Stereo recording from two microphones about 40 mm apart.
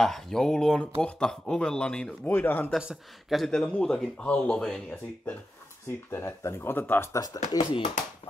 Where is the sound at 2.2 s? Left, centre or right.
Left.